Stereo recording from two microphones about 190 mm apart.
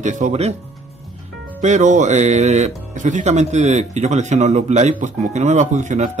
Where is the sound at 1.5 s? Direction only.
40° right (ahead or behind).